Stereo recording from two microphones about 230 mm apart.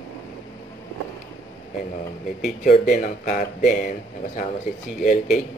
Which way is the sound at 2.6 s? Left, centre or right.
Left.